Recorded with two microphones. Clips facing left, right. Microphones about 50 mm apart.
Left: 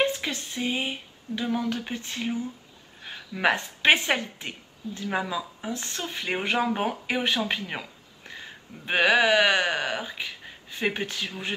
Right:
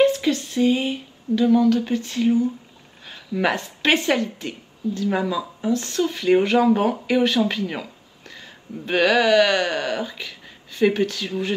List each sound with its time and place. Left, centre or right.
0.0 s a woman's voice: centre